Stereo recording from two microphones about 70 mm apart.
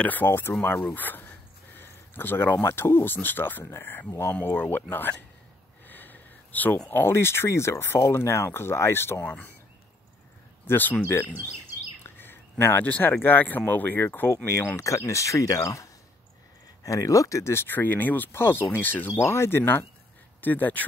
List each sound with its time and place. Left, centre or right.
0.0 s speech: left
0.3 s speech: left
1.8 s a sound: left
2.7 s speech: left
5.9 s a sound: left
6.9 s speech: left
9.2 s speech: left
10.7 s speech: left
12.0 s a sound: left
13.1 s speech: left
19.1 s speech: left